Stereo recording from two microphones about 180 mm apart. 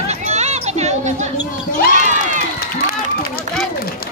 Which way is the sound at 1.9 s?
45° right (ahead or behind).